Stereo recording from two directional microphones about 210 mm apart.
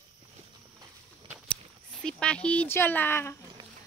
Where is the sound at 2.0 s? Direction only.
5° left (ahead or behind).